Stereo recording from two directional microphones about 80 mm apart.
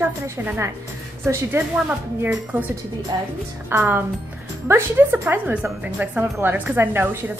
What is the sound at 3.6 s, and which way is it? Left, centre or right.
Speech, right.